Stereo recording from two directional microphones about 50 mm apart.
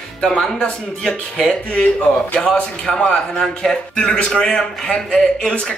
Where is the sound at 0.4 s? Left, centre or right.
Centre.